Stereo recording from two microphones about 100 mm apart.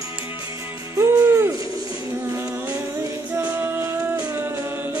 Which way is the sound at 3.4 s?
20° right (ahead or behind).